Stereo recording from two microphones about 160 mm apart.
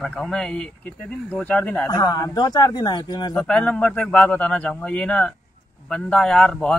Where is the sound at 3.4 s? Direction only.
5° left (ahead or behind).